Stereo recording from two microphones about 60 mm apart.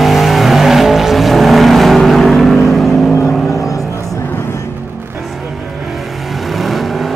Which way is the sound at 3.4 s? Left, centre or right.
Left.